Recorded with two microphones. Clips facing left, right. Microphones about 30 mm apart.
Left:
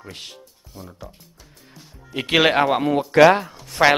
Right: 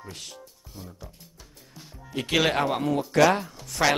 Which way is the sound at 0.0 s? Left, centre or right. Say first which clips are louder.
Left 4 dB; left.